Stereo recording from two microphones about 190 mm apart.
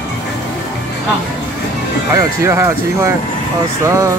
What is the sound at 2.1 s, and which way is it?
Speech, 15° right (ahead or behind).